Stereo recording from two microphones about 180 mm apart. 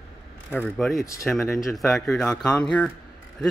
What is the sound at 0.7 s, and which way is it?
Speech, centre (ahead or behind).